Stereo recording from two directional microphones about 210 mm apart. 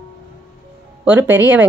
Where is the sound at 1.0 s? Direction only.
10° right (ahead or behind).